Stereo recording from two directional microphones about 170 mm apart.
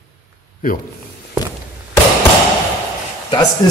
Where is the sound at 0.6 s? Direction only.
55° left (ahead or behind).